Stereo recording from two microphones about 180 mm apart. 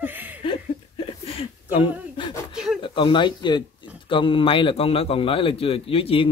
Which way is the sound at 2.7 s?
25° left (ahead or behind).